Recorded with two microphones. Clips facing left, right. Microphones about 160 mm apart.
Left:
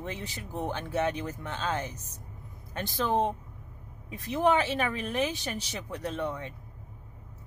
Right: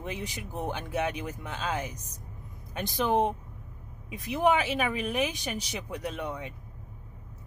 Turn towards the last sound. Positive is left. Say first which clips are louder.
# left 2 dB
turn(degrees=-10)  # may be behind; listen again after turning